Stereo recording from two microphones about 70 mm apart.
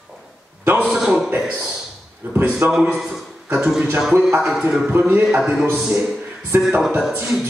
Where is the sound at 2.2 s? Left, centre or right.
Right.